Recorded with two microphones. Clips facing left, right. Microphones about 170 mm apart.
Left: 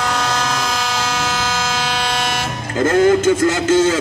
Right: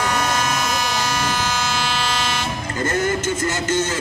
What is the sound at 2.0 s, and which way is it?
Vehicle, 75° left (ahead or behind).